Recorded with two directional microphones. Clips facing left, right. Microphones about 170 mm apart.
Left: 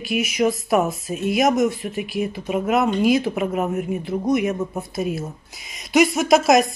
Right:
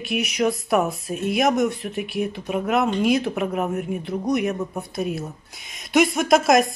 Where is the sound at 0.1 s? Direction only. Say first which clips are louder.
Left 2 dB; centre (ahead or behind).